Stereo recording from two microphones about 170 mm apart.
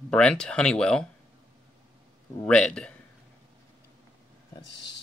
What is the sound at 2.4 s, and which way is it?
Speech, 5° left (ahead or behind).